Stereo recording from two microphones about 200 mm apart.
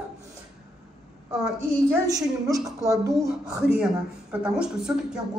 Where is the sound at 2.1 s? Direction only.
15° right (ahead or behind).